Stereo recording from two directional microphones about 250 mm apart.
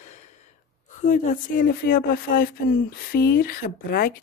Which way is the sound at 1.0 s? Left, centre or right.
Left.